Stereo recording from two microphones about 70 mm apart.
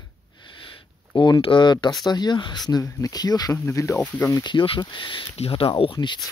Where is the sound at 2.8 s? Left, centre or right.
Left.